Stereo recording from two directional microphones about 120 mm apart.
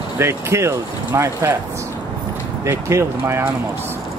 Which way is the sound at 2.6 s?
25° right (ahead or behind).